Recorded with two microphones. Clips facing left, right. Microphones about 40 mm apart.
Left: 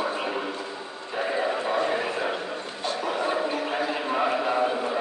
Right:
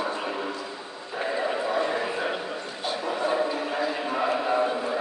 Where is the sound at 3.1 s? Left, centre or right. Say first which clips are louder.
Even; centre.